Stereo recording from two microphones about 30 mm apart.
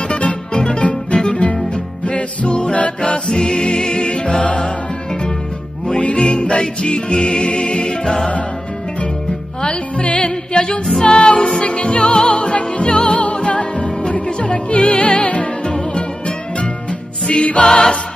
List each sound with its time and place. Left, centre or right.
0.1 s music: left
3.3 s music: left
6.1 s music: left
9.9 s music: left
11.0 s music: left
11.6 s music: left
17.6 s music: left